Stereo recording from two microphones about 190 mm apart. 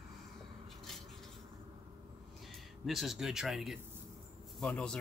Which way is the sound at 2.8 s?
Centre (ahead or behind).